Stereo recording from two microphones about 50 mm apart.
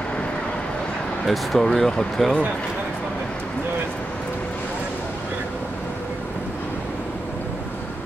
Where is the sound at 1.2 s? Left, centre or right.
Centre.